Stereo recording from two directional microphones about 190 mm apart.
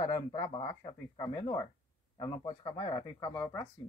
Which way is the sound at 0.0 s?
25° left (ahead or behind).